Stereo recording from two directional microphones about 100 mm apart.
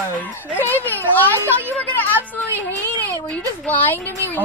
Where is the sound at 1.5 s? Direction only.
15° left (ahead or behind).